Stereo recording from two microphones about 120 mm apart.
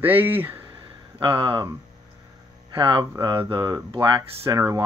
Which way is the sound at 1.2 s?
40° right (ahead or behind).